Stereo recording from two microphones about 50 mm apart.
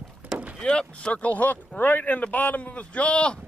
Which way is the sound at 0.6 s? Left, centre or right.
Centre.